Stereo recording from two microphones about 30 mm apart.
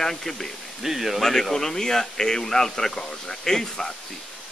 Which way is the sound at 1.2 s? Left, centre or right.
Centre.